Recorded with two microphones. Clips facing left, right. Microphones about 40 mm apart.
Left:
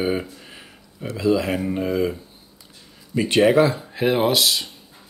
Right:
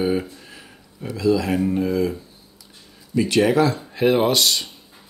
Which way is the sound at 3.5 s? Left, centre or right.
Centre.